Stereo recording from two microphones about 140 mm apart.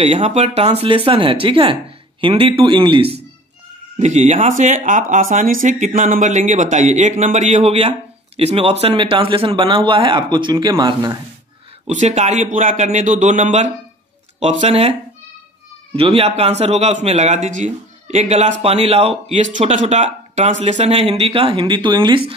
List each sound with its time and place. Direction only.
0.0 s speech: 50° right (ahead or behind)
4.0 s a man's voice: 55° right (ahead or behind); by 11.1 s 30° right (ahead or behind)
11.9 s a man's voice: 55° right (ahead or behind)
16.0 s a man's voice: 45° right (ahead or behind)